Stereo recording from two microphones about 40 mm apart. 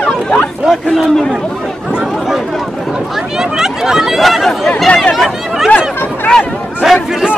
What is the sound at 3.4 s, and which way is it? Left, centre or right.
Hubbub, centre.